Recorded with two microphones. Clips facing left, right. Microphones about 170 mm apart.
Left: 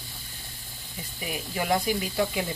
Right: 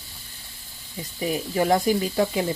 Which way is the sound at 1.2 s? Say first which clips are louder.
Right 8 dB; 35° right (ahead or behind).